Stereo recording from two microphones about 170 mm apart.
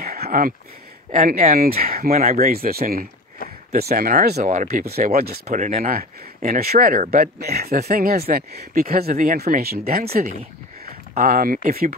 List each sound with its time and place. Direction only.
0.0 s a sound: 65° right (ahead or behind)
1.1 s speech: 55° right (ahead or behind)
4.8 s speech: 60° right (ahead or behind)
5.6 s speech: 40° right (ahead or behind)
5.9 s speech: 55° right (ahead or behind)